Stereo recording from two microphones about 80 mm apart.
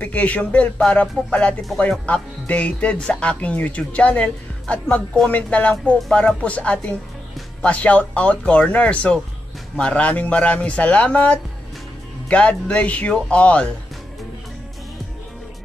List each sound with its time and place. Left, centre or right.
0.0 s speech: centre